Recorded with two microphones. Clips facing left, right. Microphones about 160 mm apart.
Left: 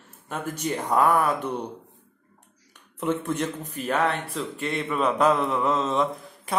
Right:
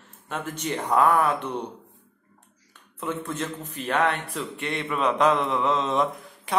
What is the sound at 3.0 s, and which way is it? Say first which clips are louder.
Speech: left 4 dB; 15° left (ahead or behind).